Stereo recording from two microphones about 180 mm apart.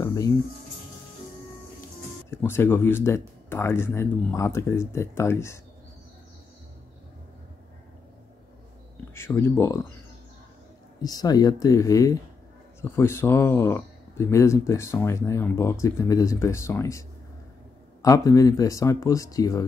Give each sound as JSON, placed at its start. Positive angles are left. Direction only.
{"t": 0.0, "sound": "music", "side_deg": 20}
{"t": 2.3, "sound": "speech", "side_deg": 10}
{"t": 9.1, "sound": "speech", "side_deg": 15}
{"t": 11.0, "sound": "speech", "side_deg": 20}
{"t": 18.0, "sound": "speech", "side_deg": 20}